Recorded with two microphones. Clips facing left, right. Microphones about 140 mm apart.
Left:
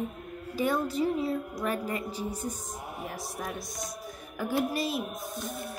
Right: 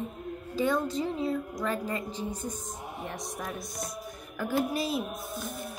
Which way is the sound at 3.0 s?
5° left (ahead or behind).